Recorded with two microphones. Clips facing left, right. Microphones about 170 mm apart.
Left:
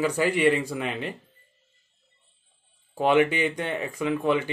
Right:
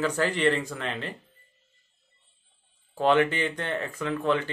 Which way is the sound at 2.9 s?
10° left (ahead or behind).